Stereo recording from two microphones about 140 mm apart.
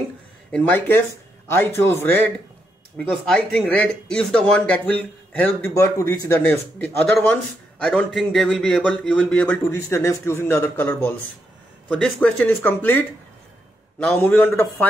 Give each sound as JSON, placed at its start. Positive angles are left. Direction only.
{"t": 0.5, "sound": "speech", "side_deg": 15}
{"t": 3.0, "sound": "speech", "side_deg": 5}
{"t": 7.8, "sound": "speech", "side_deg": 5}